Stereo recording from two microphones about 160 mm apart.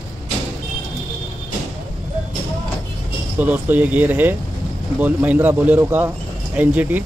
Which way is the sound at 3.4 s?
10° right (ahead or behind).